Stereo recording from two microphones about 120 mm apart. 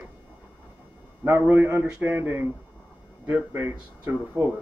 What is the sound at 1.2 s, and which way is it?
Speech, 20° right (ahead or behind).